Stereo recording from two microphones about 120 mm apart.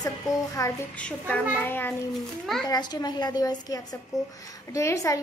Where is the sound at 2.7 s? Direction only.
35° left (ahead or behind).